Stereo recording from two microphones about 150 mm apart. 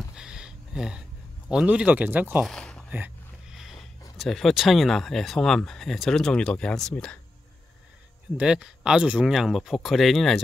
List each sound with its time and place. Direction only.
0.1 s a sound: 5° right (ahead or behind)
1.5 s speech: 5° right (ahead or behind)
2.4 s speech: 5° left (ahead or behind)
2.9 s a sound: 5° right (ahead or behind)
4.2 s speech: centre (ahead or behind)
8.4 s speech: 5° right (ahead or behind)